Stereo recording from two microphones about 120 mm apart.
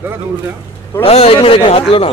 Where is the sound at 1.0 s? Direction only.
55° left (ahead or behind).